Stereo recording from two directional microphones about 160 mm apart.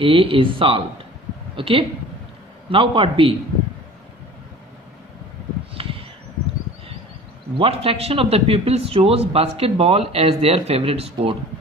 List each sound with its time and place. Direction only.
0.0 s a man's voice: 35° right (ahead or behind)
5.8 s a sound: 35° right (ahead or behind)
7.5 s a man's voice: 35° right (ahead or behind)